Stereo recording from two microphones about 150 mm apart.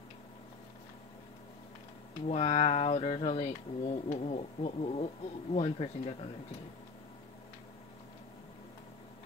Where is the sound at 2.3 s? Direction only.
45° left (ahead or behind).